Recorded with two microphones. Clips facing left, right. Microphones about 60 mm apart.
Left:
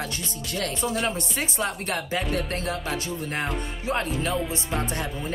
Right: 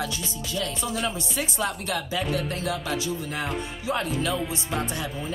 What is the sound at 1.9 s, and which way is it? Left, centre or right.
Music, left.